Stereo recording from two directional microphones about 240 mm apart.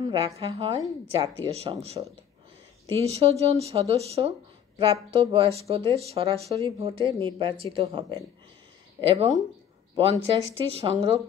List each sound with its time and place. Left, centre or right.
0.0 s speech: right